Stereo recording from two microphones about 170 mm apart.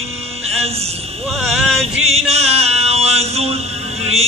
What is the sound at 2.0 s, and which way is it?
Music, 40° right (ahead or behind).